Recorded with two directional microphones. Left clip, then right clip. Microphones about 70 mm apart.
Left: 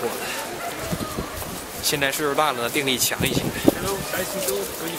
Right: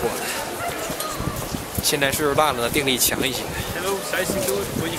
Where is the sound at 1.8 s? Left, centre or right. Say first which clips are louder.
Right 2 dB; centre.